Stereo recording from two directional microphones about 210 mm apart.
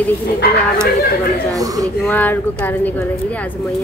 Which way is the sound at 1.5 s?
15° right (ahead or behind).